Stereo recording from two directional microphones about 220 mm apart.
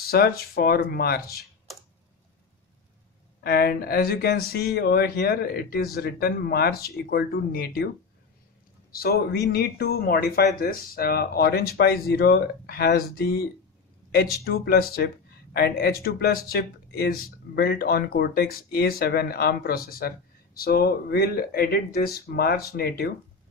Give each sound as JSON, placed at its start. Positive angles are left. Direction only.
{"t": 0.0, "sound": "speech", "side_deg": 45}
{"t": 3.4, "sound": "speech", "side_deg": 45}
{"t": 8.9, "sound": "speech", "side_deg": 45}